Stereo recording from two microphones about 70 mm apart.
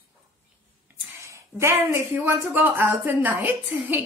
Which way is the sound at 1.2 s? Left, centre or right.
Right.